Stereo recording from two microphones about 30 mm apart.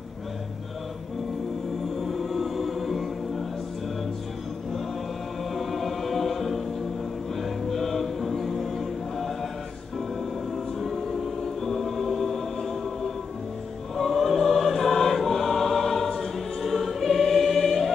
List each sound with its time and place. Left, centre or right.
2.0 s music: centre
5.5 s choir: centre
7.3 s a capella: centre
10.5 s choir: centre
13.9 s choir: centre